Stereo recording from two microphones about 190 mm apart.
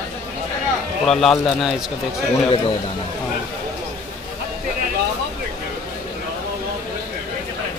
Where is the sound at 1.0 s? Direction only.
5° left (ahead or behind).